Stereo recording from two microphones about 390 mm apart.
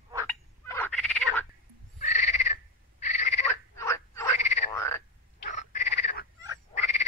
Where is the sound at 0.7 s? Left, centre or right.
Centre.